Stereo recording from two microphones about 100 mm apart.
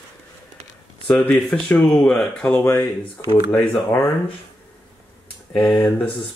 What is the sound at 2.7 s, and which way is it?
Speech, 50° left (ahead or behind).